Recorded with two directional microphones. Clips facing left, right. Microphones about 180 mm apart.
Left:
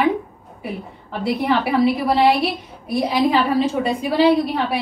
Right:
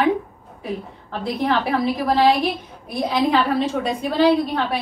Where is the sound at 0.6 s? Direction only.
10° left (ahead or behind).